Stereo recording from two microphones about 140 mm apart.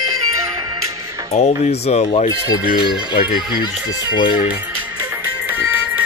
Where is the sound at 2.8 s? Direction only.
35° left (ahead or behind).